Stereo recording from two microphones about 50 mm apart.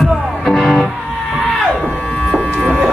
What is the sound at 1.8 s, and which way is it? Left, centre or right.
Music, centre.